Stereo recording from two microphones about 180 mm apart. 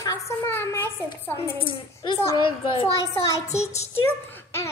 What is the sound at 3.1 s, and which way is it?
Speech, 15° left (ahead or behind).